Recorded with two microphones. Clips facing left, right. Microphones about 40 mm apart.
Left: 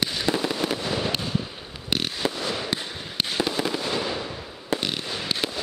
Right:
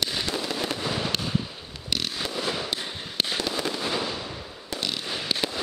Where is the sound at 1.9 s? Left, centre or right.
Left.